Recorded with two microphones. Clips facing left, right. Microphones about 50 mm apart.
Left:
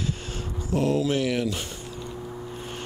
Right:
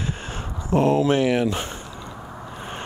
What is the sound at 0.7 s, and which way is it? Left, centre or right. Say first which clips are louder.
Speech: right 5 dB; right.